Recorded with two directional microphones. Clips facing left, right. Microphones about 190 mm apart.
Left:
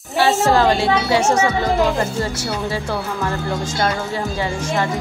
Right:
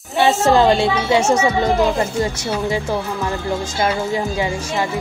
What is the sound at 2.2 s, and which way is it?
Speech, 15° right (ahead or behind).